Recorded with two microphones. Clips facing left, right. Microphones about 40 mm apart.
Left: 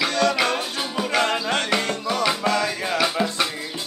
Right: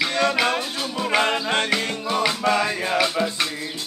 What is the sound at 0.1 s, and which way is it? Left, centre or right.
Music, centre.